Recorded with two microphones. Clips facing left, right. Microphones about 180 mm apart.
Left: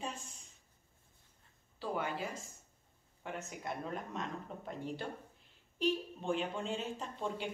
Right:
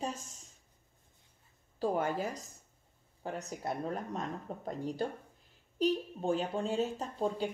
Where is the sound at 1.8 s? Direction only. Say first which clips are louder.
Right 6 dB; 45° right (ahead or behind).